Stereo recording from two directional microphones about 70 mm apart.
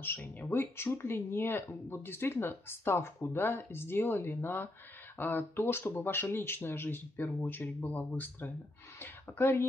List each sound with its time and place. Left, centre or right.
0.0 s speech: left
9.0 s speech: left